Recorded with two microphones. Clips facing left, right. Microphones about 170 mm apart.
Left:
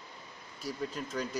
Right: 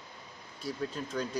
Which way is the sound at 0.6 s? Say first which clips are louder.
Right 1 dB; centre (ahead or behind).